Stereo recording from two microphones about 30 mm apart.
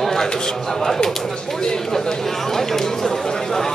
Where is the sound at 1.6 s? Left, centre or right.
Centre.